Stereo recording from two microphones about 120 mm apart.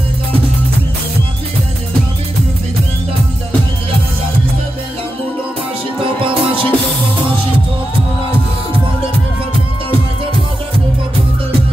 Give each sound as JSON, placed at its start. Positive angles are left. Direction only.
{"t": 6.2, "sound": "music", "side_deg": -45}